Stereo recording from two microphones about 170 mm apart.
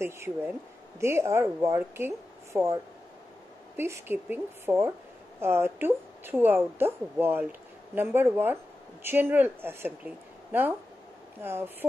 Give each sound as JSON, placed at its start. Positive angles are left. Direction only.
{"t": 0.0, "sound": "speech", "side_deg": -15}